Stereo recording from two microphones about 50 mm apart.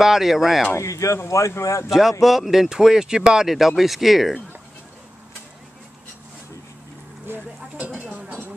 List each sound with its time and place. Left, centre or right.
0.0 s speech: centre
0.7 s speech: left
1.9 s speech: centre
7.8 s dishes: right